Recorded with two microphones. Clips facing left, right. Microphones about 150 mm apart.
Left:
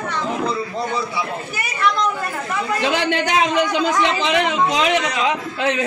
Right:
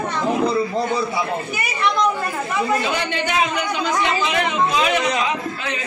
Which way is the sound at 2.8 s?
90° left.